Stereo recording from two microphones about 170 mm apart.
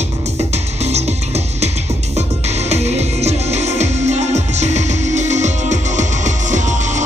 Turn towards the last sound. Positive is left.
turn(degrees=-45)  # may be behind; listen again after turning